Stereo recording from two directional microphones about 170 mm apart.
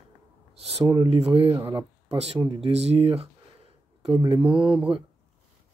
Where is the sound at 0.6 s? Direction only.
35° right (ahead or behind).